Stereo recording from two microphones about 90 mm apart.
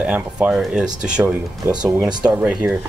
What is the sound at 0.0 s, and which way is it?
Speech, 15° right (ahead or behind).